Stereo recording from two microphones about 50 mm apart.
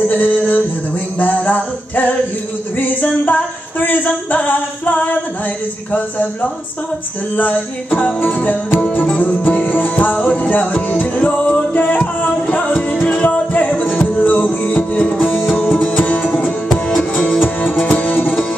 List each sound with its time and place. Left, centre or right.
0.1 s music: left
5.9 s speech: left
7.3 s music: left
10.1 s speech: left
10.5 s music: left
15.1 s music: left
15.5 s music: left; by 17.4 s centre
17.7 s music: left